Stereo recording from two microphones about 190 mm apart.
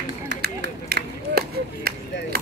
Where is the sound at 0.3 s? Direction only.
60° right (ahead or behind).